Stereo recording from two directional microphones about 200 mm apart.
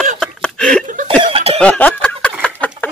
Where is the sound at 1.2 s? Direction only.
25° right (ahead or behind).